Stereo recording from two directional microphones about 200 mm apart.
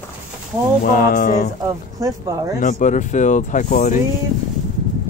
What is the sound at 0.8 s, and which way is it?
Speech, 45° left (ahead or behind).